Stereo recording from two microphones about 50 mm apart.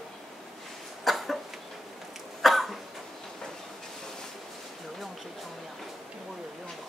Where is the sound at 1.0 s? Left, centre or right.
Centre.